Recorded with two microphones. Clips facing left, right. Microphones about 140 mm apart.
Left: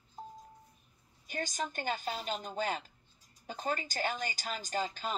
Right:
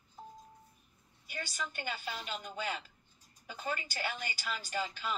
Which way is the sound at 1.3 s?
45° left (ahead or behind).